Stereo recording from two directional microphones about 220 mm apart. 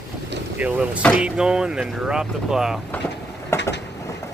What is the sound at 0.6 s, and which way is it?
Speech, 5° right (ahead or behind).